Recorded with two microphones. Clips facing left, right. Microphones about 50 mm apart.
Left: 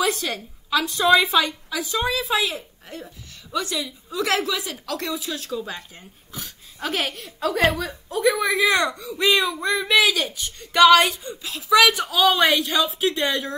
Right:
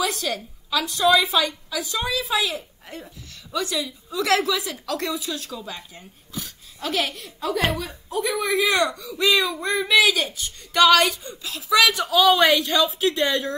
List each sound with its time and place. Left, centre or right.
0.0 s a woman's voice: left
12.1 s speech: centre